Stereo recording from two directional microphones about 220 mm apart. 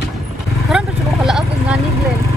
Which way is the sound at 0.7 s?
Centre (ahead or behind).